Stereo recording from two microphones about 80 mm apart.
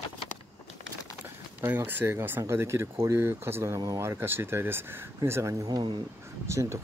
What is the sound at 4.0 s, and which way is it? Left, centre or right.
Speech, right.